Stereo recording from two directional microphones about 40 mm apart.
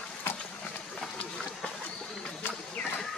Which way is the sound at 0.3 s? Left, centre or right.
Left.